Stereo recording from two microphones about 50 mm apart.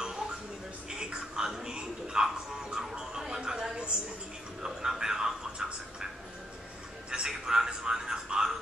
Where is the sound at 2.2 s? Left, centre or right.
Centre.